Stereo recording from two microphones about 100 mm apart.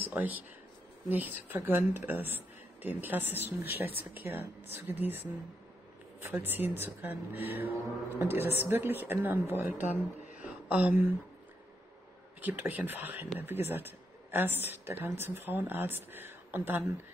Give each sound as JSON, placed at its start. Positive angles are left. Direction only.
{"t": 0.1, "sound": "speech", "side_deg": -15}
{"t": 6.2, "sound": "speech", "side_deg": -20}
{"t": 12.4, "sound": "a woman's voice", "side_deg": -20}